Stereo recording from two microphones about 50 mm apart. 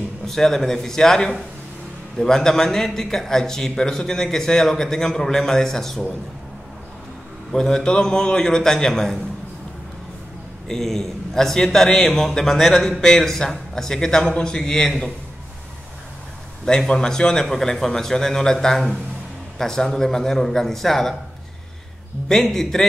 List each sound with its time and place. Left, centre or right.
0.3 s a man's voice: centre
7.5 s a man's voice: centre
10.7 s a man's voice: centre
16.6 s a man's voice: centre
22.3 s a man's voice: centre